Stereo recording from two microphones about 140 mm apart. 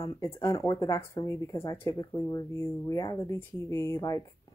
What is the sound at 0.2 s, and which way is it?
Speech, 25° left (ahead or behind).